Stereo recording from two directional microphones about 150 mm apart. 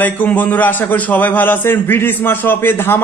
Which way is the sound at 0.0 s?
10° left (ahead or behind).